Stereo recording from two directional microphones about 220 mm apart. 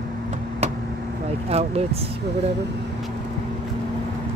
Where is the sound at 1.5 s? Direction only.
30° right (ahead or behind).